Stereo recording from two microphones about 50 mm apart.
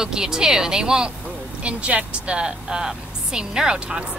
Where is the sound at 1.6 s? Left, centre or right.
Right.